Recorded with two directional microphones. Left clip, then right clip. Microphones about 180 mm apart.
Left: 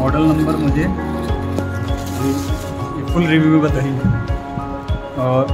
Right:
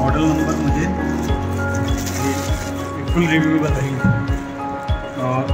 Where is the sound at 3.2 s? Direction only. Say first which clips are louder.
Left 2 dB; 75° left (ahead or behind).